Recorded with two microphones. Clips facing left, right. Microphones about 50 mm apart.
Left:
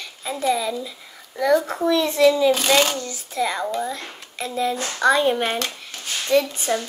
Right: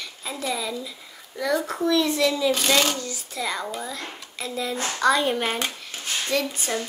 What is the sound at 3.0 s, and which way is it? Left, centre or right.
Speech, left.